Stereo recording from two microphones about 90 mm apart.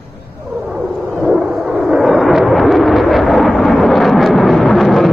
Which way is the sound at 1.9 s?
Centre (ahead or behind).